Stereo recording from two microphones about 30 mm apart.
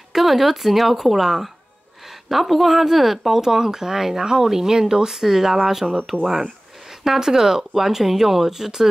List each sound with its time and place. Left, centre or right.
0.1 s speech: centre
3.3 s speech: centre
7.1 s speech: centre